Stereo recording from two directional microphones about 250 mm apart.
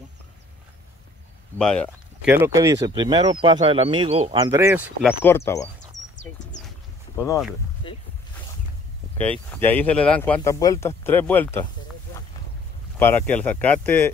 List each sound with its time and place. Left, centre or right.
1.6 s speech: centre
2.3 s speech: centre
5.2 s speech: centre
7.2 s speech: centre
9.5 s speech: centre
13.0 s speech: centre